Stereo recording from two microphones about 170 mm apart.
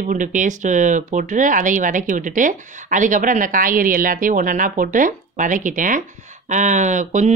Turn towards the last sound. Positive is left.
turn(degrees=-45)  # may be behind; listen again after turning